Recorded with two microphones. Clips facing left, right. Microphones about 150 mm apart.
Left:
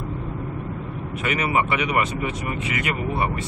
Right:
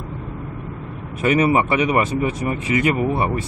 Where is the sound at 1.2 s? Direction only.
35° right (ahead or behind).